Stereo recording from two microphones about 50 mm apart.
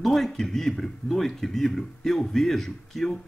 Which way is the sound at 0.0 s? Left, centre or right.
Centre.